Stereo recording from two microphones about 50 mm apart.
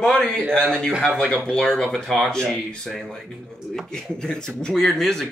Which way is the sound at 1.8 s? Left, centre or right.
Centre.